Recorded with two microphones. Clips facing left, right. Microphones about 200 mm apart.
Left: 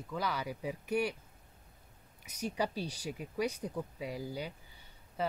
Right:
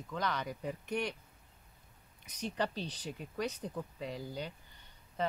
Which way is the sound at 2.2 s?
10° left (ahead or behind).